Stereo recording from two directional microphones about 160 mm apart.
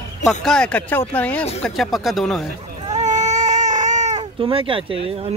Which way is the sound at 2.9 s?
50° right (ahead or behind).